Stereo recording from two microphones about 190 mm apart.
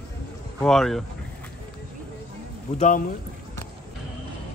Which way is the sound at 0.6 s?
Centre (ahead or behind).